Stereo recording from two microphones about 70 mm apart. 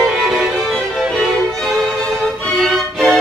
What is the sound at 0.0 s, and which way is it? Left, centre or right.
Music, centre.